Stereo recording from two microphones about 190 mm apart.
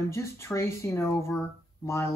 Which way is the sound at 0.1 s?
15° left (ahead or behind).